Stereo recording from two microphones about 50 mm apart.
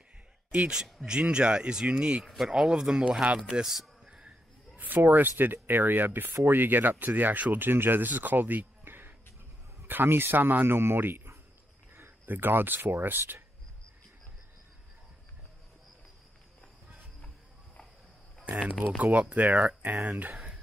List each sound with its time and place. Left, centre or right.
0.5 s a man's voice: right
2.2 s speech: centre
2.5 s speech: centre
4.7 s speech: right
18.6 s speech: right